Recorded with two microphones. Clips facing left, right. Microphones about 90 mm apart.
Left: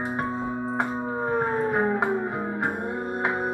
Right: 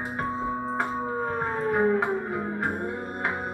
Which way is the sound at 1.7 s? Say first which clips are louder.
Even; 20° left (ahead or behind).